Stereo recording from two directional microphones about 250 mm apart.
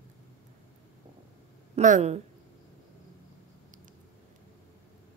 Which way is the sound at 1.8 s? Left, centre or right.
Right.